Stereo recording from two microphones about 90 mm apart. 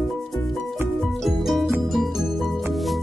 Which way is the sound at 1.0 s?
5° left (ahead or behind).